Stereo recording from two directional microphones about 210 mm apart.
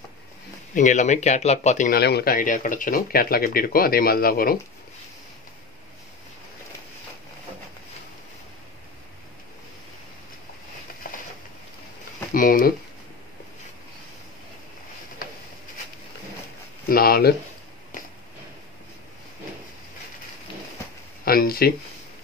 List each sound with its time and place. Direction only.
0.7 s speech: 35° left (ahead or behind)
12.4 s speech: 40° left (ahead or behind)
16.9 s speech: 45° left (ahead or behind)
21.3 s speech: 45° left (ahead or behind)